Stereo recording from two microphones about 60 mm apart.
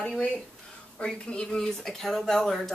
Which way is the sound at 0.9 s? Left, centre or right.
Centre.